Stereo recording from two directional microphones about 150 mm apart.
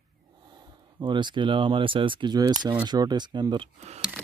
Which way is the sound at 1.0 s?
30° right (ahead or behind).